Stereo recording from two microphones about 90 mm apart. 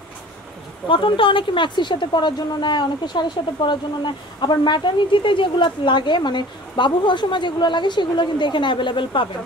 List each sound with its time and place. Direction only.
0.8 s a woman's voice: 70° left (ahead or behind)